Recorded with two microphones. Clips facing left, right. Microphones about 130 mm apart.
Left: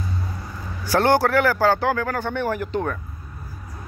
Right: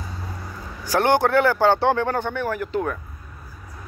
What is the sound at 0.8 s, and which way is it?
Speech, 15° right (ahead or behind).